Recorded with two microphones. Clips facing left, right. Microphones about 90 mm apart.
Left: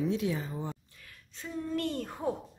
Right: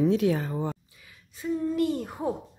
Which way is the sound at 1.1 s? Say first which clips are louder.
Right 12 dB; 10° right (ahead or behind).